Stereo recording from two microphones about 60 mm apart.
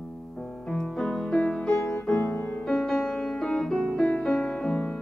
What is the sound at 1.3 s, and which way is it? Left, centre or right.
Music, centre.